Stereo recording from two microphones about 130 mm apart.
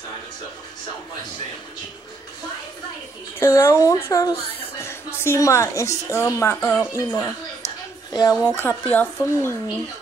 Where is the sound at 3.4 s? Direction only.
20° left (ahead or behind).